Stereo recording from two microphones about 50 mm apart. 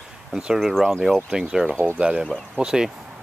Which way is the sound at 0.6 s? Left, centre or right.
Centre.